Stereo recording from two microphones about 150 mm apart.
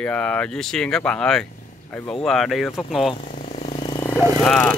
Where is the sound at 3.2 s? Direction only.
55° left (ahead or behind).